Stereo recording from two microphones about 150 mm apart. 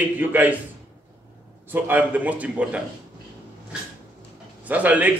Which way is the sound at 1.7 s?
10° right (ahead or behind).